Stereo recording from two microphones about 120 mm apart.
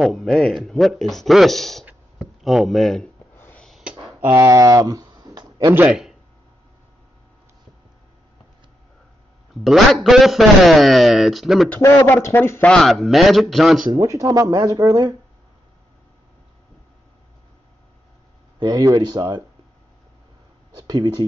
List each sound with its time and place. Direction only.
0.0 s a man's voice: centre (ahead or behind)
3.3 s a sound: 20° left (ahead or behind)
3.6 s a sound: centre (ahead or behind)
4.4 s speech: 30° right (ahead or behind)
5.9 s speech: 5° right (ahead or behind)
9.5 s a man's voice: centre (ahead or behind)
11.8 s a man's voice: 20° left (ahead or behind)
12.7 s a man's voice: centre (ahead or behind)
13.9 s speech: 25° right (ahead or behind)
18.6 s speech: 35° right (ahead or behind)
20.7 s a sound: 35° right (ahead or behind)